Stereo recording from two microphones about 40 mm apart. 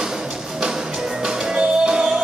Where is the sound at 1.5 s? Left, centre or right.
Right.